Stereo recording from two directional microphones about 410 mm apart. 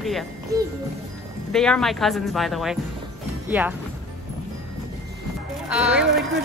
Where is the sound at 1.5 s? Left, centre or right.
Centre.